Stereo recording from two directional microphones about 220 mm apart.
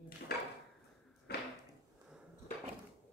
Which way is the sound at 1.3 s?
45° left (ahead or behind).